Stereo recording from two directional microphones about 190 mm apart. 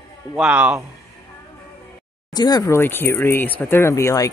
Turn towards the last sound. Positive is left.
turn(degrees=15)  # may be behind; listen again after turning